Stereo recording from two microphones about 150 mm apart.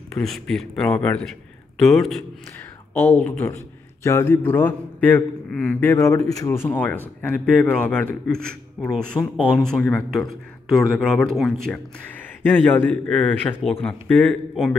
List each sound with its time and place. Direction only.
0.2 s a man's voice: centre (ahead or behind)
0.9 s a man's voice: 10° left (ahead or behind)
1.8 s a man's voice: centre (ahead or behind)
2.9 s a man's voice: 10° left (ahead or behind)